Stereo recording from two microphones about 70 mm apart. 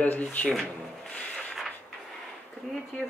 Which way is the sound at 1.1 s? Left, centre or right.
Centre.